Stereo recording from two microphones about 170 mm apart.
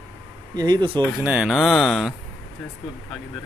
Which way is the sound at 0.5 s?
25° right (ahead or behind).